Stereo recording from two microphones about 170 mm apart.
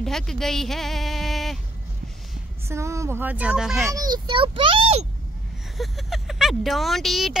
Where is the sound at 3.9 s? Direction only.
25° right (ahead or behind).